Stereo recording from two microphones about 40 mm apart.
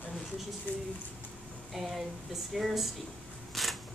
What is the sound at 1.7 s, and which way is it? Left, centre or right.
A woman's voice, centre.